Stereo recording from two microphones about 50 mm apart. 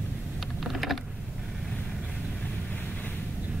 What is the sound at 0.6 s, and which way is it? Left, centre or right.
Mechanisms, centre.